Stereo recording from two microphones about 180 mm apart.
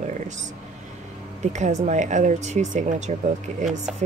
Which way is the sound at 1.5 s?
40° right (ahead or behind).